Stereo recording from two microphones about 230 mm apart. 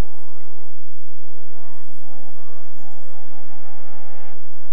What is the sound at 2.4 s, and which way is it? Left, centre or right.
Music, left.